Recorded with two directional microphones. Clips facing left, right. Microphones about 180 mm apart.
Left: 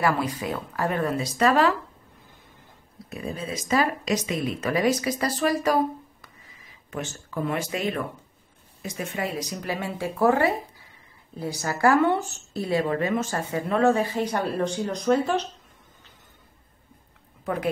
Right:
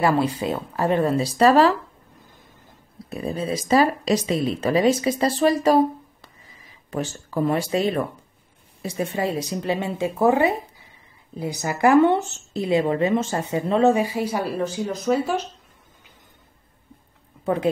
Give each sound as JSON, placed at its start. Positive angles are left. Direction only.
{"t": 0.0, "sound": "speech", "side_deg": -25}
{"t": 3.1, "sound": "speech", "side_deg": -30}
{"t": 6.9, "sound": "speech", "side_deg": -35}